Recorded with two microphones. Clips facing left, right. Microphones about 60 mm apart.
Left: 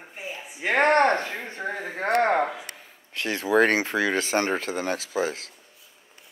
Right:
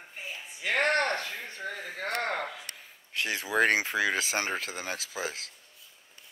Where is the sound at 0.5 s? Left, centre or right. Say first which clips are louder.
Left 7 dB; left.